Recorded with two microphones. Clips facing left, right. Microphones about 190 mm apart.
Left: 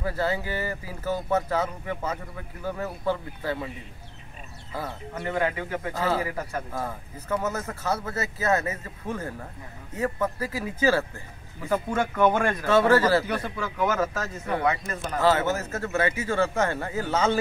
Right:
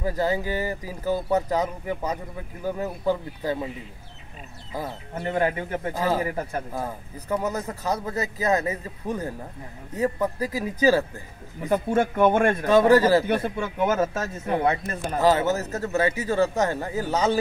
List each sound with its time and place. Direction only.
0.0 s speech: 15° right (ahead or behind)
4.7 s speech: 20° right (ahead or behind)
5.4 s a man's voice: 35° right (ahead or behind)
5.9 s speech: 15° right (ahead or behind)
11.7 s speech: 25° right (ahead or behind)
12.6 s speech: 15° right (ahead or behind)
13.3 s speech: 25° right (ahead or behind)
15.0 s speech: 15° right (ahead or behind)